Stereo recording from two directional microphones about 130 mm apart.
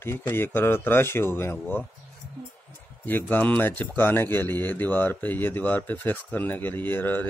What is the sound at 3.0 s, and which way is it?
A man's voice, 15° left (ahead or behind).